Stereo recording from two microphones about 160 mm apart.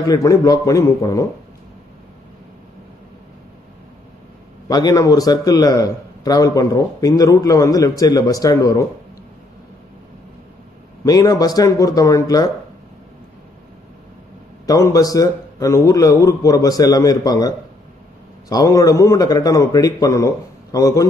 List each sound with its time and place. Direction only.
0.0 s a man's voice: 20° left (ahead or behind)
4.6 s a man's voice: 25° left (ahead or behind)
11.1 s a man's voice: 25° left (ahead or behind)
14.7 s a man's voice: 20° left (ahead or behind)